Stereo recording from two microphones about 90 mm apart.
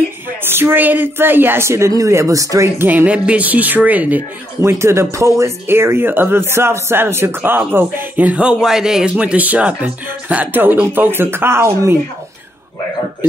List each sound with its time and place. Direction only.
0.5 s speech: 25° right (ahead or behind)
2.9 s speech: 15° right (ahead or behind)
4.6 s speech: 30° right (ahead or behind)